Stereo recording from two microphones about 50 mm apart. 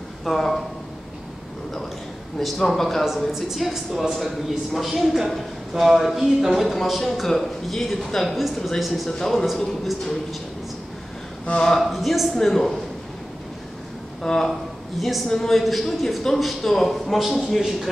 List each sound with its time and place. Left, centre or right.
0.2 s a woman's voice: centre
2.3 s a woman's voice: centre
11.4 s speech: centre
11.8 s a woman's voice: centre
14.2 s speech: centre
15.0 s a woman's voice: centre
15.2 s a woman's voice: centre